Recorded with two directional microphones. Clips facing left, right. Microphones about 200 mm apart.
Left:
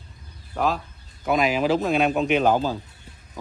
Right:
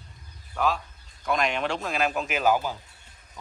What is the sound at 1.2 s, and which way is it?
Speech, 5° left (ahead or behind).